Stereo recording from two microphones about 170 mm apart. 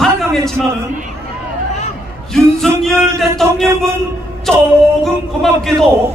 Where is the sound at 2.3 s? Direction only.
Centre (ahead or behind).